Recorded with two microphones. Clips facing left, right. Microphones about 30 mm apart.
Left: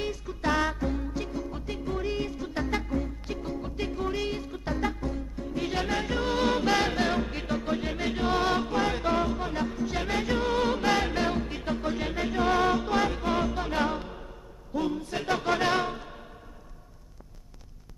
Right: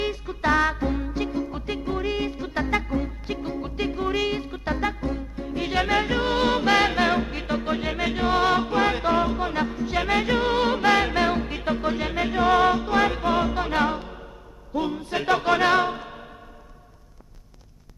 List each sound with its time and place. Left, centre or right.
0.0 s music: right
7.2 s music: centre
7.5 s music: right
9.7 s music: centre
9.9 s music: right
13.9 s music: centre
14.7 s music: right